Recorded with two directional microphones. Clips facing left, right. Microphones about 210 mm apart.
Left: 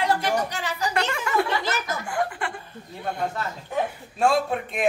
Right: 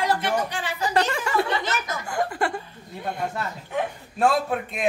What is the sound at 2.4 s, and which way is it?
Chuckle, 40° right (ahead or behind).